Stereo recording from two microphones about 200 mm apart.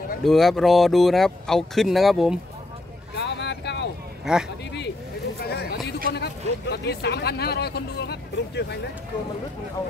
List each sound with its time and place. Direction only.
0.2 s speech: centre (ahead or behind)
3.2 s boat: 60° left (ahead or behind)
4.3 s speech: centre (ahead or behind)
5.4 s a sound: 55° left (ahead or behind)
6.1 s speech: 55° left (ahead or behind)